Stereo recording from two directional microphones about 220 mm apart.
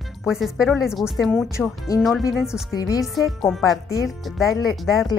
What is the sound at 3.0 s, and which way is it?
Speech, centre (ahead or behind).